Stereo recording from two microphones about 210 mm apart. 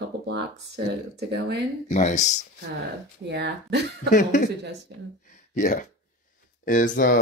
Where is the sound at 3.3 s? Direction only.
55° right (ahead or behind).